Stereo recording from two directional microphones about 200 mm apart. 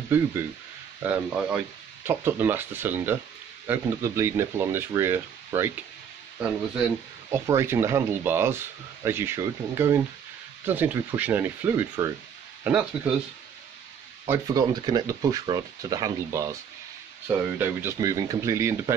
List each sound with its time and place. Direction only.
0.1 s speech: 10° right (ahead or behind)
7.3 s speech: 15° right (ahead or behind)
14.2 s speech: 15° right (ahead or behind)